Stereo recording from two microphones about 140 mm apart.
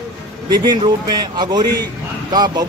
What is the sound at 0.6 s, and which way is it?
A man's voice, 30° right (ahead or behind).